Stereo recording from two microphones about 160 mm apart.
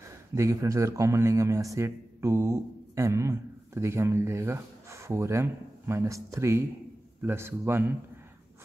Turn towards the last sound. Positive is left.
turn(degrees=-15)  # may be behind; listen again after turning